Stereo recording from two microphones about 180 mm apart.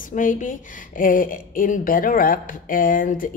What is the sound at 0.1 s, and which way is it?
A woman's voice, 45° left (ahead or behind).